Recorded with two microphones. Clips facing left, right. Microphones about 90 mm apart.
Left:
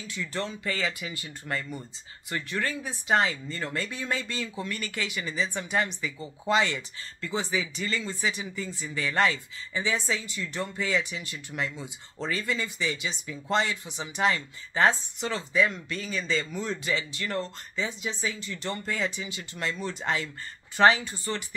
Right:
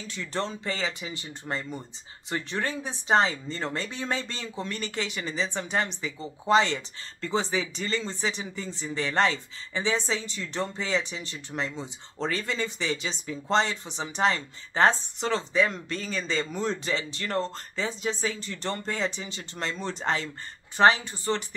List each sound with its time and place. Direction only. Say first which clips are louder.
0.0 s a man's voice: right 1 dB; 35° right (ahead or behind)
20.7 s speech: even; 25° right (ahead or behind)